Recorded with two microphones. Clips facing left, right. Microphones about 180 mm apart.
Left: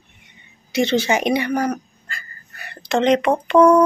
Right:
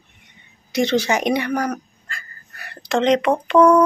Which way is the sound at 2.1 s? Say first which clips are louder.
Even; centre (ahead or behind).